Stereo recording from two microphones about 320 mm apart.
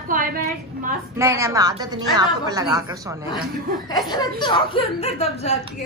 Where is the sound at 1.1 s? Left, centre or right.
Centre.